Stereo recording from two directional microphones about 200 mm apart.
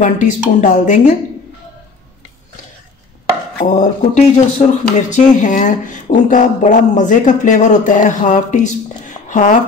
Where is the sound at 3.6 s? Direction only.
35° left (ahead or behind).